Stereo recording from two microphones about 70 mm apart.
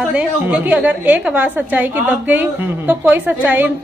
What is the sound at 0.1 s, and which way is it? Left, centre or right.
A woman's voice, centre.